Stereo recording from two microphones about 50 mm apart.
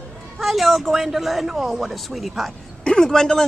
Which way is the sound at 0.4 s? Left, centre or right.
Centre.